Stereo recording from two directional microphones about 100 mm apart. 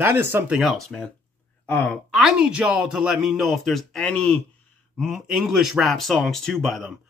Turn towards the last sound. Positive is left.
turn(degrees=0)  # may be behind; listen again after turning